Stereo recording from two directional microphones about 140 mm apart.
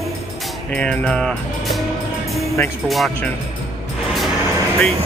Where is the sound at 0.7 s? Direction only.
10° left (ahead or behind).